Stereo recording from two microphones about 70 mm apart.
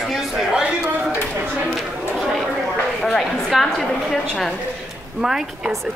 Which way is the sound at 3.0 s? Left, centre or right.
Centre.